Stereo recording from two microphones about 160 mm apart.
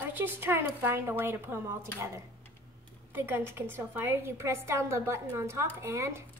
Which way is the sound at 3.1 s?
15° right (ahead or behind).